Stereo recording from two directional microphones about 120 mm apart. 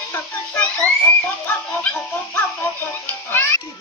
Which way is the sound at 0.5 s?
15° left (ahead or behind).